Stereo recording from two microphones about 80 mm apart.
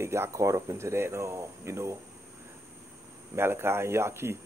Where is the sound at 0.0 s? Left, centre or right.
Right.